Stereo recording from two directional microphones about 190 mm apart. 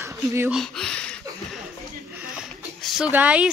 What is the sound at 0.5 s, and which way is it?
Speech, centre (ahead or behind).